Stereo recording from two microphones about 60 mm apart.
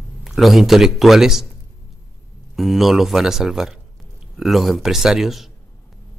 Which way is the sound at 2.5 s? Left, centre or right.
Centre.